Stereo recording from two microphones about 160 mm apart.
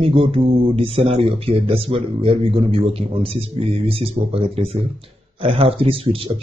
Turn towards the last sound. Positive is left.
turn(degrees=-35)  # may be behind; listen again after turning